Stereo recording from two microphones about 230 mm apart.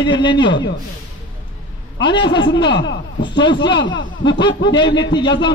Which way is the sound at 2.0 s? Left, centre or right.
Centre.